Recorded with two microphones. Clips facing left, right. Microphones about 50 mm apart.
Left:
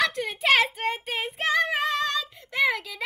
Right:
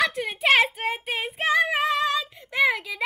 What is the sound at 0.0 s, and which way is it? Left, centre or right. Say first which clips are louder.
Child singing: right 1 dB; centre.